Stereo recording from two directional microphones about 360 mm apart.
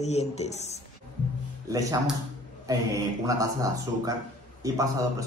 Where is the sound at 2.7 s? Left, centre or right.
Centre.